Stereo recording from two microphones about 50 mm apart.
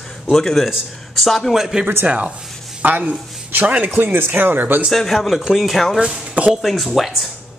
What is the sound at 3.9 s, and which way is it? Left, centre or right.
Speech, right.